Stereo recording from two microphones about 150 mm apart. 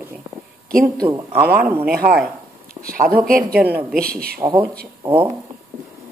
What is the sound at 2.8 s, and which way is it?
A man's voice, 75° right (ahead or behind).